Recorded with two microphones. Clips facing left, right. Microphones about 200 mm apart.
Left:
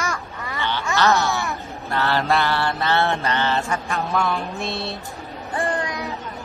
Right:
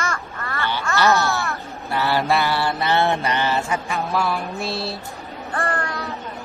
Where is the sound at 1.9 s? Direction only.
15° right (ahead or behind).